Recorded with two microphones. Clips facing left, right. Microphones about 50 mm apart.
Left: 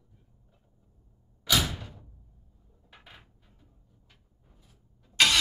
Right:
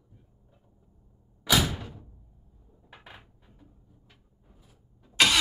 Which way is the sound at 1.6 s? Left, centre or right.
Centre.